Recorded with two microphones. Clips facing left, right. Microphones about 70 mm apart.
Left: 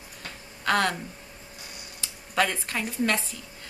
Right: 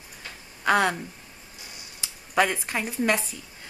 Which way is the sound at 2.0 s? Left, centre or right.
Centre.